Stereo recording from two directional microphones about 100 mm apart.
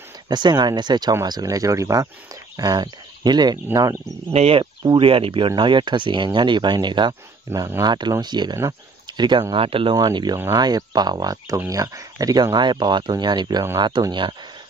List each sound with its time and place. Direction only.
0.3 s speech: 45° right (ahead or behind)
4.3 s speech: 80° right
5.0 s speech: 65° right (ahead or behind)
5.6 s speech: 55° right (ahead or behind)
7.5 s speech: 25° right (ahead or behind)
7.8 s speech: 45° right (ahead or behind)
9.0 s a sound: 45° right (ahead or behind)
9.5 s speech: 65° right (ahead or behind)
9.9 s speech: 40° right (ahead or behind)